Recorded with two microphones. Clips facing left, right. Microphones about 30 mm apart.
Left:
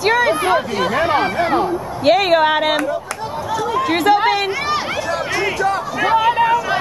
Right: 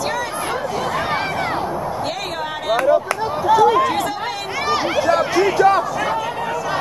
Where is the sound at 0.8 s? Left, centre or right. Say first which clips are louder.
Left 4 dB; centre.